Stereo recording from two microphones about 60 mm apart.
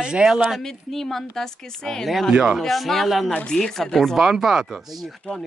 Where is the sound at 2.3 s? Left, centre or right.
Centre.